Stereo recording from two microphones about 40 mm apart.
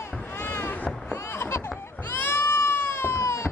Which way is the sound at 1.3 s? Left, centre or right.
Left.